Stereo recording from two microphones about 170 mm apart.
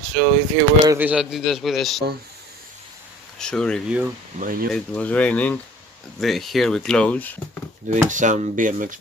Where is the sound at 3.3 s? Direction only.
5° left (ahead or behind).